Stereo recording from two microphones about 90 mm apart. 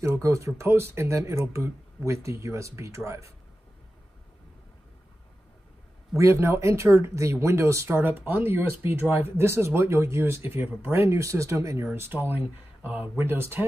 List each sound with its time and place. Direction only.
0.0 s speech: 30° right (ahead or behind)
6.1 s speech: 35° right (ahead or behind)